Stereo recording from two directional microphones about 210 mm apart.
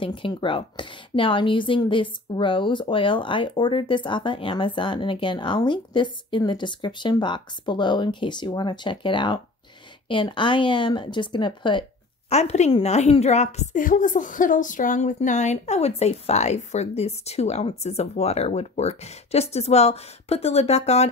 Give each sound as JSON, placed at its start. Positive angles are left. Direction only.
{"t": 0.0, "sound": "a woman's voice", "side_deg": 25}